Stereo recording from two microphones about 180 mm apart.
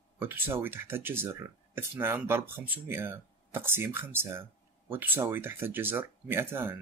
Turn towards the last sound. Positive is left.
turn(degrees=-15)  # may be behind; listen again after turning